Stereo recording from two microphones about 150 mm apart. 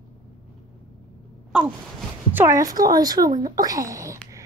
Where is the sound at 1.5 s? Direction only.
10° right (ahead or behind).